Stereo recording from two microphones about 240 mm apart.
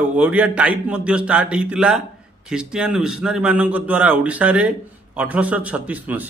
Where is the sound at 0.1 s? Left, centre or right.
Centre.